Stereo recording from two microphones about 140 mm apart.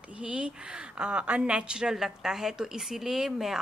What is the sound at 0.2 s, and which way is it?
A woman's voice, 10° right (ahead or behind).